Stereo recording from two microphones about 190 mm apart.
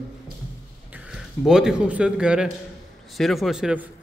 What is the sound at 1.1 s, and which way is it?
A man's voice, 5° right (ahead or behind).